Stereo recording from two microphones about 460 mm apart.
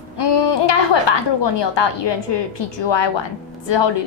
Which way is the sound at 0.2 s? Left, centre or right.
Left.